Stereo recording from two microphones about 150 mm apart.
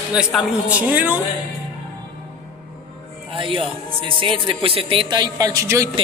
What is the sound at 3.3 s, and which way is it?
Speech, 35° right (ahead or behind).